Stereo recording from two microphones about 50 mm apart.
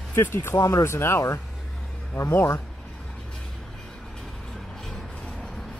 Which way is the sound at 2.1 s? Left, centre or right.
Left.